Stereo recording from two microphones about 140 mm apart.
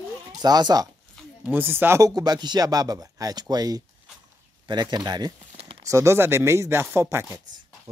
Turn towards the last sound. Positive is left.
turn(degrees=-20)  # may be behind; listen again after turning